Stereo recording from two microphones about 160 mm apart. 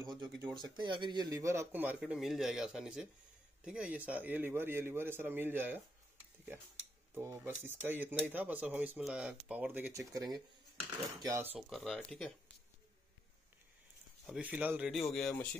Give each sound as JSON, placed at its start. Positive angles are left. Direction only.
{"t": 0.0, "sound": "speech", "side_deg": -25}
{"t": 7.2, "sound": "speech", "side_deg": -15}
{"t": 11.7, "sound": "speech", "side_deg": 0}
{"t": 14.2, "sound": "speech", "side_deg": -5}
{"t": 14.9, "sound": "speech", "side_deg": 0}